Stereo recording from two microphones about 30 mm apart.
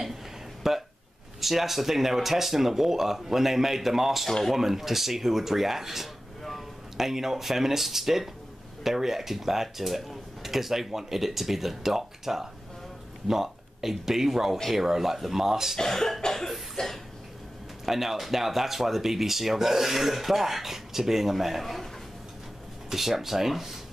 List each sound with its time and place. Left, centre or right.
0.7 s speech: centre
15.8 s speech: centre
16.3 s cough: centre
16.7 s a sound: centre
17.8 s speech: centre
22.8 s speech: centre